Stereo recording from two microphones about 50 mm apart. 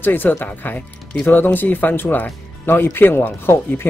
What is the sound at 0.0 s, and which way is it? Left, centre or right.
Speech, left.